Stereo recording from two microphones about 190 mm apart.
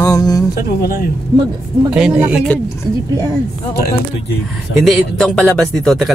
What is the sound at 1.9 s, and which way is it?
Speech, 5° right (ahead or behind).